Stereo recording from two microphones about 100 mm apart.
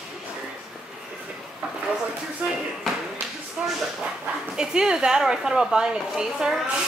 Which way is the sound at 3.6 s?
10° right (ahead or behind).